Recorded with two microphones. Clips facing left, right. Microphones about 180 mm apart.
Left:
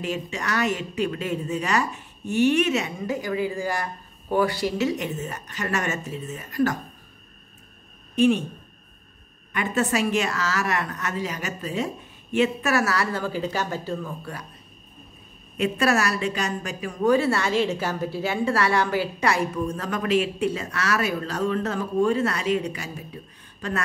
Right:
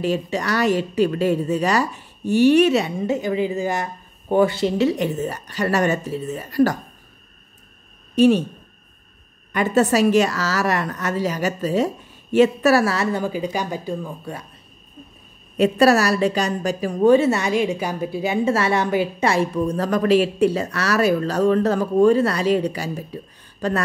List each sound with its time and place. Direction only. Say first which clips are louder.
0.0 s a woman's voice: right 7 dB; 35° right (ahead or behind)
9.5 s a woman's voice: right 7 dB; 40° right (ahead or behind); by 14.3 s 15° right (ahead or behind)
15.5 s a woman's voice: right 7 dB; 35° right (ahead or behind)